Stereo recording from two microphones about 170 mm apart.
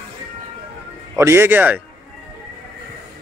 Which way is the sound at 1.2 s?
15° right (ahead or behind).